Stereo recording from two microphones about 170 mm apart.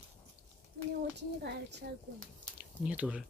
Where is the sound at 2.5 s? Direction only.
10° right (ahead or behind).